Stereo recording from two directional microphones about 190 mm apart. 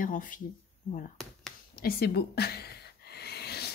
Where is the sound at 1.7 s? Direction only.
55° left (ahead or behind).